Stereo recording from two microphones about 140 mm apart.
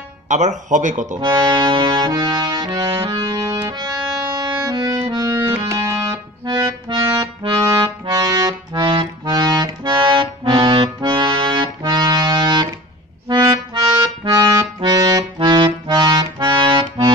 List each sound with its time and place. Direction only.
0.3 s speech: 55° right (ahead or behind)
1.2 s accordion: 35° right (ahead or behind)
13.7 s music: 30° right (ahead or behind)
15.3 s accordion: 35° right (ahead or behind)